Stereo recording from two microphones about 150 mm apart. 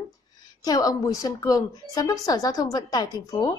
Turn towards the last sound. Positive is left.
turn(degrees=25)  # may be behind; listen again after turning